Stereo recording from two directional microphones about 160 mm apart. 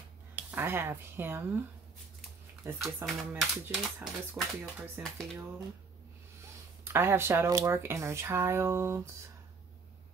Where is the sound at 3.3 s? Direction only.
10° right (ahead or behind).